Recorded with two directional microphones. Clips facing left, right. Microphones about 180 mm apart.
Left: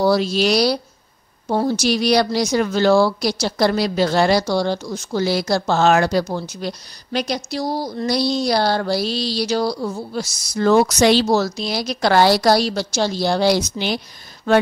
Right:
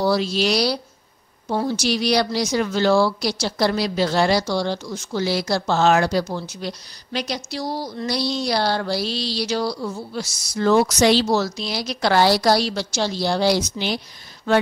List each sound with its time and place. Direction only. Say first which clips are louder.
0.0 s a woman's voice: left 3 dB; 45° left (ahead or behind)